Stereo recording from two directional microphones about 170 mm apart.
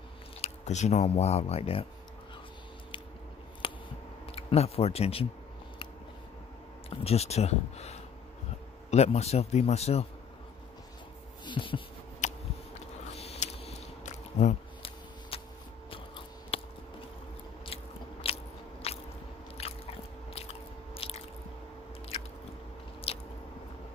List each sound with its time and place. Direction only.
0.4 s speech: 40° left (ahead or behind)
3.6 s a sound: 30° left (ahead or behind)
4.3 s speech: 35° left (ahead or behind)
6.9 s speech: 35° left (ahead or behind)
11.4 s a sound: 30° left (ahead or behind)
12.2 s a sound: 45° left (ahead or behind)
15.9 s scissors: 30° left (ahead or behind)
18.2 s biting: 35° left (ahead or behind)
20.9 s biting: 35° left (ahead or behind)
23.1 s biting: 35° left (ahead or behind)